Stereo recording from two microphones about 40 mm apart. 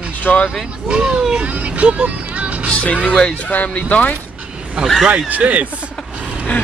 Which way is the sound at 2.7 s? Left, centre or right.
Left.